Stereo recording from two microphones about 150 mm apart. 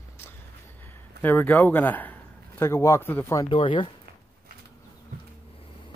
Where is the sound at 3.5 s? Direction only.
35° left (ahead or behind).